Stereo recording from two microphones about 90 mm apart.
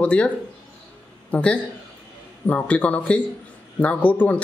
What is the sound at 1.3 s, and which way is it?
A man's voice, 15° left (ahead or behind).